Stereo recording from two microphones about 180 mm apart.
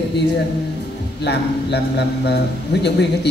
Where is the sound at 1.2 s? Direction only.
70° left (ahead or behind).